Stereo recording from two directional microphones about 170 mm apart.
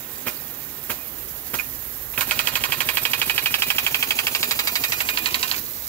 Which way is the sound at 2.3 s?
10° left (ahead or behind).